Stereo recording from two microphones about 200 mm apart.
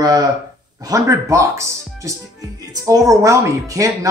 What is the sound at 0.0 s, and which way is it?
Speech, 20° right (ahead or behind).